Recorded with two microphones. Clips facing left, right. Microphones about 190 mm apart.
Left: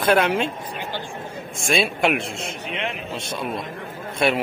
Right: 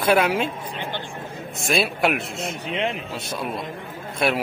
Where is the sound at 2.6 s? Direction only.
35° right (ahead or behind).